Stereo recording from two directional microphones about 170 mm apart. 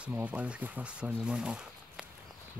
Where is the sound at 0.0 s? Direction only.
10° right (ahead or behind).